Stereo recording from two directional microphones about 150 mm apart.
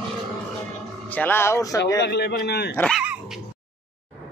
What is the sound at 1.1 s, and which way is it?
Speech, 10° left (ahead or behind).